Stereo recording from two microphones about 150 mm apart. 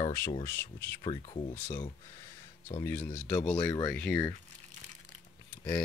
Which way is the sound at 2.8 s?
10° left (ahead or behind).